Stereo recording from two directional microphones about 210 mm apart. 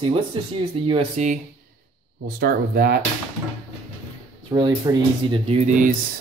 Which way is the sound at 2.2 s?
45° right (ahead or behind).